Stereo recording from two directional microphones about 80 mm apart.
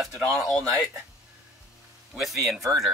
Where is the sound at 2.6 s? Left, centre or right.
Right.